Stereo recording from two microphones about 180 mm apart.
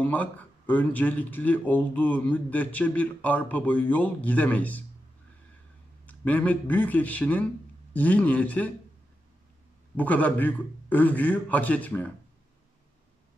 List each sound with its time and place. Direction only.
0.0 s speech: 10° left (ahead or behind)
6.0 s speech: 10° left (ahead or behind)
9.9 s speech: 10° left (ahead or behind)